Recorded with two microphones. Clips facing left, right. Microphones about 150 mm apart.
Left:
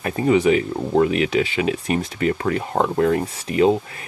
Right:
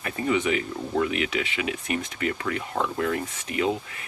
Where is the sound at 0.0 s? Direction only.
35° left (ahead or behind).